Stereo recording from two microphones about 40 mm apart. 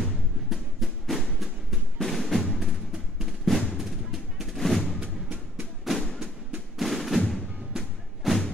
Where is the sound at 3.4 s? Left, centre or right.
Centre.